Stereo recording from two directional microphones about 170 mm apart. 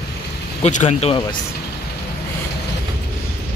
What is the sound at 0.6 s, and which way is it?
Speech, 45° left (ahead or behind).